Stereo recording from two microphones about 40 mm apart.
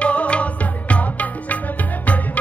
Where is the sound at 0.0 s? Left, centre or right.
Left.